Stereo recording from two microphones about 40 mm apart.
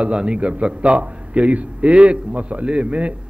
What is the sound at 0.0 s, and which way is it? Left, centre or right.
A man's voice, right.